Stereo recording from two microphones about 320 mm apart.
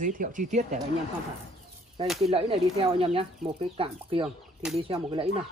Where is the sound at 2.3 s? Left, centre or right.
Centre.